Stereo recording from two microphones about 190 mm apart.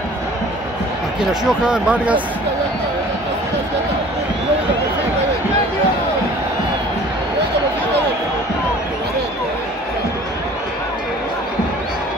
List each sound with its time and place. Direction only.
1.4 s speech: 5° right (ahead or behind)